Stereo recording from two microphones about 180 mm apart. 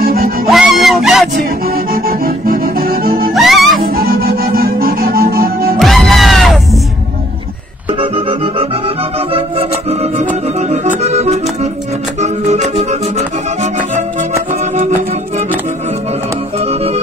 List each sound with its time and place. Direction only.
0.0 s music: 55° right (ahead or behind)
0.5 s a sound: centre (ahead or behind)
1.7 s music: 55° right (ahead or behind)
3.3 s music: centre (ahead or behind)
3.8 s music: 55° right (ahead or behind)
5.8 s music: centre (ahead or behind)
8.0 s music: 30° right (ahead or behind)
10.7 s accordion: 35° right (ahead or behind)
12.2 s music: 40° right (ahead or behind)
16.5 s music: 35° right (ahead or behind)